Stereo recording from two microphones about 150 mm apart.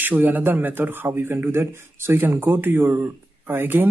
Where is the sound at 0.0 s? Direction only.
10° right (ahead or behind).